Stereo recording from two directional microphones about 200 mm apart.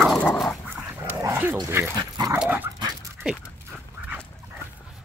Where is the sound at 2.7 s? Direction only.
20° right (ahead or behind).